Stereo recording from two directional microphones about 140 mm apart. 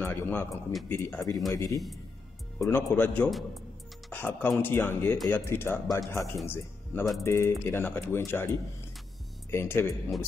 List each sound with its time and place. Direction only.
0.0 s speech: 15° left (ahead or behind)
3.3 s speech: centre (ahead or behind)
4.1 s speech: 15° left (ahead or behind)